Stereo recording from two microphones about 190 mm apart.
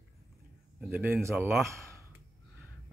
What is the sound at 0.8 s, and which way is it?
Speech, 5° right (ahead or behind).